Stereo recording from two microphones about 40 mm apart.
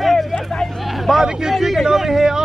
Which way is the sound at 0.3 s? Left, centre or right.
Centre.